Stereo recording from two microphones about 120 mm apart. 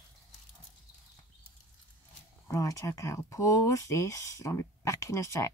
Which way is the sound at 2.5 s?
25° left (ahead or behind).